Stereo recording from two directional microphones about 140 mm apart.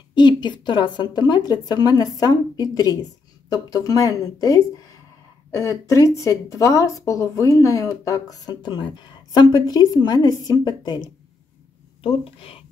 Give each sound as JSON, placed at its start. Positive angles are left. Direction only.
{"t": 0.1, "sound": "a woman's voice", "side_deg": 30}
{"t": 12.0, "sound": "speech", "side_deg": 40}